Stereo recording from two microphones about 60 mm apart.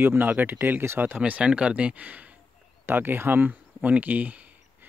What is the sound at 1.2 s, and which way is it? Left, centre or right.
Speech, right.